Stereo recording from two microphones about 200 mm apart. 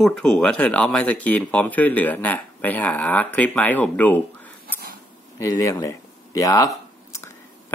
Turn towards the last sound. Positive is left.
turn(degrees=15)  # may be behind; listen again after turning